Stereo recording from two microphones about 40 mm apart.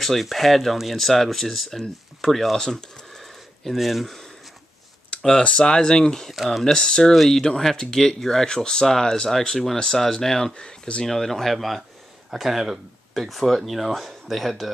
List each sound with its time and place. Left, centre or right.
0.0 s speech: centre
5.7 s speech: centre
6.3 s speech: centre
6.6 s speech: left
7.0 s speech: centre
10.5 s speech: left
11.1 s speech: centre